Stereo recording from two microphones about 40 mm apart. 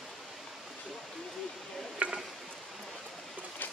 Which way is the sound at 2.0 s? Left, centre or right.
Right.